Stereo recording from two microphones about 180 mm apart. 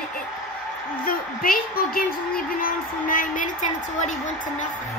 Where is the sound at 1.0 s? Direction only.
55° left (ahead or behind).